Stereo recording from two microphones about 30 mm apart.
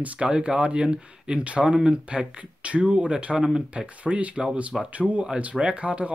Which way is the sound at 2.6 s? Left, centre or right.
Right.